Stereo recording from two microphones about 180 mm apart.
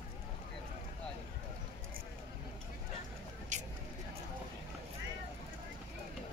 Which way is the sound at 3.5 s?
45° right (ahead or behind).